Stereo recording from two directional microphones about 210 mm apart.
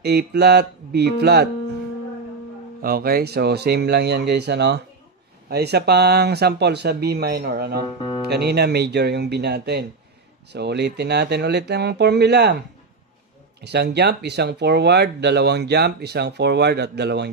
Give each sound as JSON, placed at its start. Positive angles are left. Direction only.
{"t": 0.0, "sound": "speech", "side_deg": -50}
{"t": 2.8, "sound": "speech", "side_deg": -45}
{"t": 7.8, "sound": "speech", "side_deg": 20}
{"t": 8.3, "sound": "speech", "side_deg": -50}
{"t": 13.6, "sound": "speech", "side_deg": -50}